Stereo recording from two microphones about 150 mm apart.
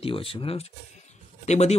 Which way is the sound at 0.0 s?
40° left (ahead or behind).